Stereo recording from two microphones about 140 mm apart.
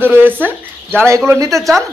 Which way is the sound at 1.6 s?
Centre (ahead or behind).